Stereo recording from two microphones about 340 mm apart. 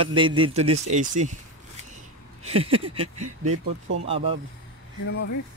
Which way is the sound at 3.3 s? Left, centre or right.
Right.